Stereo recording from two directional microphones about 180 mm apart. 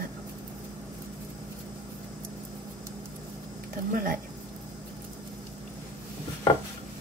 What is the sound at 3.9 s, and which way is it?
Speech, 50° right (ahead or behind).